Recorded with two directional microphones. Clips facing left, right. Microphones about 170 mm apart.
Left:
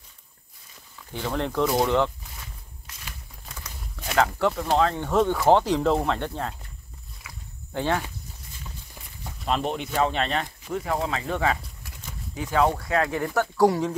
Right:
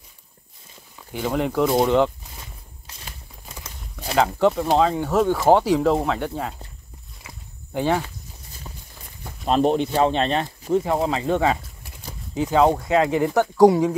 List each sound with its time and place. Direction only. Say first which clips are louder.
1.1 s speech: right 4 dB; 10° right (ahead or behind)
2.9 s a sound: right 3 dB; 30° right (ahead or behind)
4.2 s speech: right 4 dB; 20° right (ahead or behind)
7.7 s speech: right 4 dB; 15° right (ahead or behind)
9.4 s speech: right 8 dB; 35° right (ahead or behind)
11.8 s a sound: right 2 dB; 30° right (ahead or behind)
12.4 s speech: right 5 dB; 20° right (ahead or behind)